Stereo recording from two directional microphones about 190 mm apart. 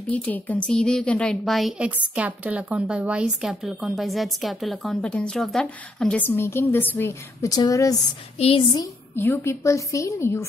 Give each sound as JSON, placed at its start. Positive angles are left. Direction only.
{"t": 0.0, "sound": "a woman's voice", "side_deg": 5}
{"t": 8.4, "sound": "a woman's voice", "side_deg": 30}
{"t": 9.1, "sound": "a woman's voice", "side_deg": 10}